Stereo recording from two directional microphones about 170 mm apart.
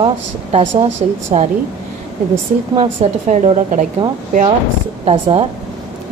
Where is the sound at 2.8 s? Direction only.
40° right (ahead or behind).